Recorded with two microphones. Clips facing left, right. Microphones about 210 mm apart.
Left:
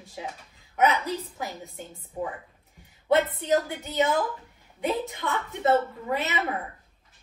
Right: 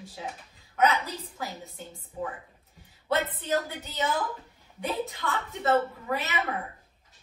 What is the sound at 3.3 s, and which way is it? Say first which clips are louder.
A woman's voice: left 4 dB; 15° left (ahead or behind).